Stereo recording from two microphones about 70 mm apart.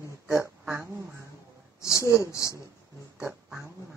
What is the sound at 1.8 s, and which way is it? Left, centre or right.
Speech, left.